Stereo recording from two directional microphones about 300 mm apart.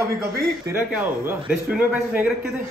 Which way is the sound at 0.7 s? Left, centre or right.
Centre.